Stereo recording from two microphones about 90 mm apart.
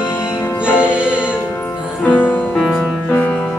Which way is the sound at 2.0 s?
20° left (ahead or behind).